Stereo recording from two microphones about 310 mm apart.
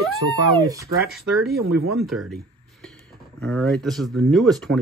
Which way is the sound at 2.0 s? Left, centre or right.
Centre.